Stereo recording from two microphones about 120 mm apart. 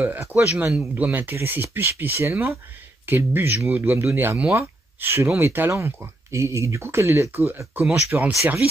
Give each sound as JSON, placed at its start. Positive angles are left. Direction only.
{"t": 0.0, "sound": "speech", "side_deg": -15}